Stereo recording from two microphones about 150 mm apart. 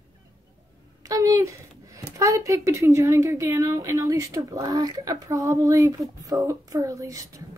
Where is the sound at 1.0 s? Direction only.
20° right (ahead or behind).